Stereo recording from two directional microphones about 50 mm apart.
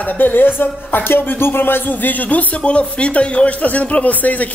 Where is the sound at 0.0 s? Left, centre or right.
Left.